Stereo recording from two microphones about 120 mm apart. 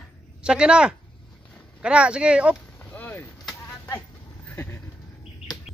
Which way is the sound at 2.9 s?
15° left (ahead or behind).